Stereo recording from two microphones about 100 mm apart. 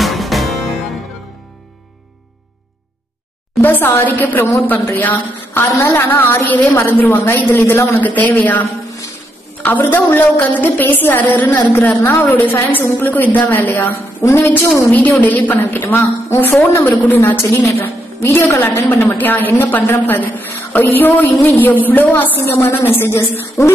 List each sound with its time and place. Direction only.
0.0 s music: centre (ahead or behind)
3.6 s a woman's voice: 20° left (ahead or behind)
9.7 s a woman's voice: 20° left (ahead or behind)
14.9 s a woman's voice: 15° left (ahead or behind)